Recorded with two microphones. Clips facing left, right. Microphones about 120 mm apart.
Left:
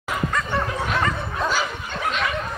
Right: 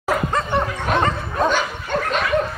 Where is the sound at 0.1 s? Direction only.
35° right (ahead or behind).